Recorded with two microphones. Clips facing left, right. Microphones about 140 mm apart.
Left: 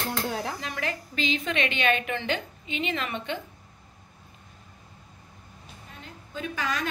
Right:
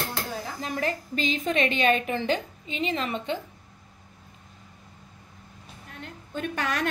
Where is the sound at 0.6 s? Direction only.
40° right (ahead or behind).